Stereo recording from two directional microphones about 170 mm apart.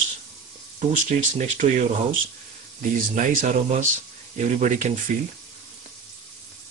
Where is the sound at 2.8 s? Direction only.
50° right (ahead or behind).